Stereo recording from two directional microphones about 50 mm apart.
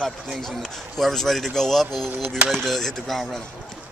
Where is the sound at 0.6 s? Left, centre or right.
Centre.